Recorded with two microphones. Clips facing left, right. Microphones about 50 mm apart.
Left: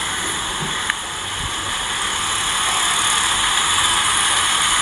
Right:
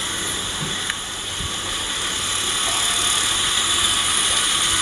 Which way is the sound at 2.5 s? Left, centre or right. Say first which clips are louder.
Left 4 dB; centre.